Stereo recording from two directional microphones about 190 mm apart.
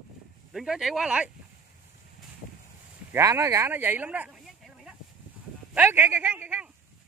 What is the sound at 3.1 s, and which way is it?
Speech, 15° right (ahead or behind).